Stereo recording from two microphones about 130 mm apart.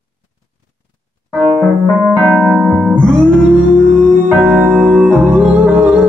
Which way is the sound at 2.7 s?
5° left (ahead or behind).